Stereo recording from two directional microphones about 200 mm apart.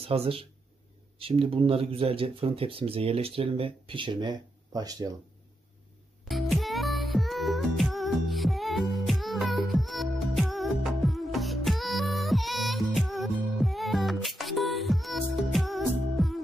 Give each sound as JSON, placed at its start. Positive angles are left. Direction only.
{"t": 0.0, "sound": "speech", "side_deg": -30}
{"t": 6.2, "sound": "music", "side_deg": 0}